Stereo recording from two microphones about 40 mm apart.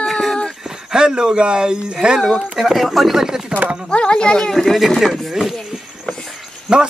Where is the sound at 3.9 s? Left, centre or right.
Left.